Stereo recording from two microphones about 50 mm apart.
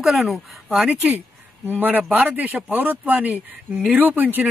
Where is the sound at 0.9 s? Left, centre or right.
Right.